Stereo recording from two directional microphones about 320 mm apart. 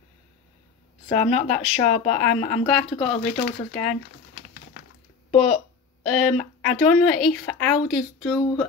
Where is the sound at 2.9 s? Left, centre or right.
Centre.